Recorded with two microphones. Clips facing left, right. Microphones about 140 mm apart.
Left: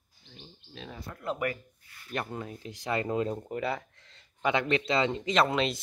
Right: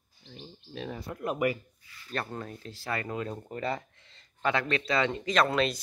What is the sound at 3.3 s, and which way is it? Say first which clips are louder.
Speech: left 2 dB; 15° left (ahead or behind).